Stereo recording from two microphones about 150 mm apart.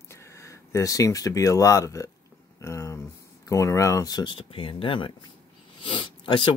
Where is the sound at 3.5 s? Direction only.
20° left (ahead or behind).